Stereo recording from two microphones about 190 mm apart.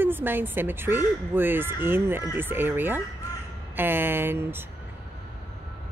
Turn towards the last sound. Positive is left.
turn(degrees=-10)  # may be behind; listen again after turning